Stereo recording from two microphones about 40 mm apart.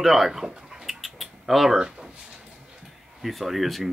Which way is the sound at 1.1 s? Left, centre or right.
Centre.